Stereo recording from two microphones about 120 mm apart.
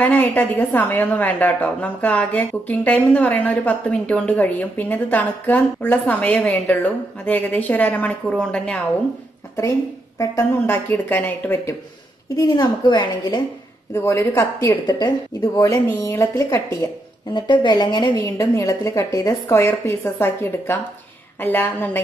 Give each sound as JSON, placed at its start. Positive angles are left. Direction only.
{"t": 0.0, "sound": "a woman's voice", "side_deg": 15}
{"t": 10.1, "sound": "a woman's voice", "side_deg": 25}
{"t": 12.4, "sound": "a woman's voice", "side_deg": 35}
{"t": 13.9, "sound": "a woman's voice", "side_deg": 25}
{"t": 14.9, "sound": "a woman's voice", "side_deg": 35}
{"t": 17.3, "sound": "a woman's voice", "side_deg": 40}
{"t": 18.2, "sound": "a woman's voice", "side_deg": 25}